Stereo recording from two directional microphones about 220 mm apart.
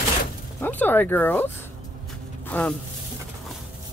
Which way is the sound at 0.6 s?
10° left (ahead or behind).